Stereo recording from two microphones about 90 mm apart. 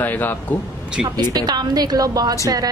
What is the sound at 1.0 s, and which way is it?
A woman's voice, 50° right (ahead or behind).